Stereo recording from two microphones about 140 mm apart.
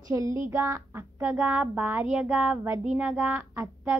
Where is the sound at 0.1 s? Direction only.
20° right (ahead or behind); by 3.3 s 5° right (ahead or behind).